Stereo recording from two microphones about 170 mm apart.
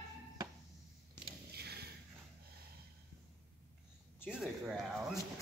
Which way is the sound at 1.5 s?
70° right (ahead or behind).